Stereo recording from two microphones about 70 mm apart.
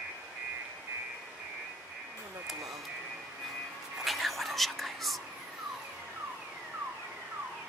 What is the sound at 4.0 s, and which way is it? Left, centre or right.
Whispering, centre.